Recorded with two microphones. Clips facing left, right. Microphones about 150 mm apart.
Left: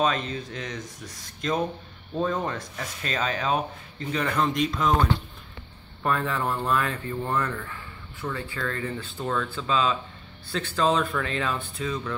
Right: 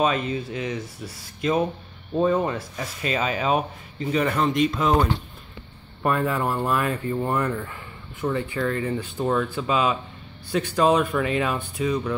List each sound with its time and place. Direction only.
0.0 s speech: 5° right (ahead or behind)
6.0 s speech: 10° right (ahead or behind)